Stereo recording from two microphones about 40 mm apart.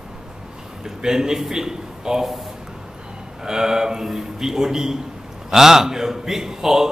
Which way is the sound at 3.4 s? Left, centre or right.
Centre.